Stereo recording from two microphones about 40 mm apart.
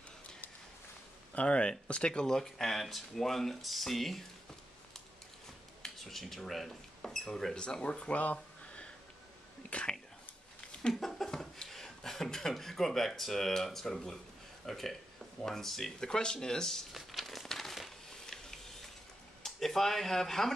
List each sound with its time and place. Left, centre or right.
1.3 s speech: left; by 4.2 s centre
5.8 s speech: centre
7.5 s speech: left
8.2 s a sound: left
9.7 s speech: left
10.9 s a sound: centre
11.2 s speech: centre
16.1 s speech: centre
16.9 s a sound: centre
19.4 s speech: centre